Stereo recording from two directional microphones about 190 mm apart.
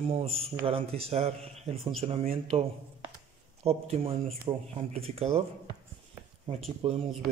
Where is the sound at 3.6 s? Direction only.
30° right (ahead or behind).